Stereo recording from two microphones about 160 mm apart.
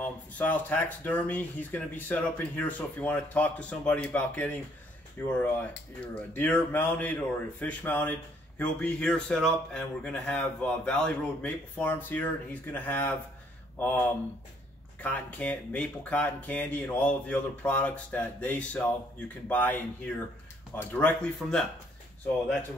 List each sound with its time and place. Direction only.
0.0 s speech: 10° left (ahead or behind)